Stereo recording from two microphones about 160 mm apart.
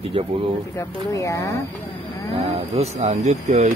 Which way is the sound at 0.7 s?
20° left (ahead or behind).